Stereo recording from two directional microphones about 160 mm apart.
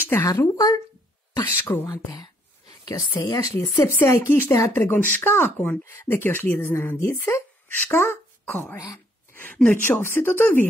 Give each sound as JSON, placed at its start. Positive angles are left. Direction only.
{"t": 0.0, "sound": "a woman's voice", "side_deg": 15}
{"t": 3.2, "sound": "a woman's voice", "side_deg": 25}